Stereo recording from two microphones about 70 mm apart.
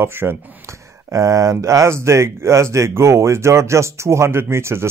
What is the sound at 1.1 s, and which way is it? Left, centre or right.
Speech, right.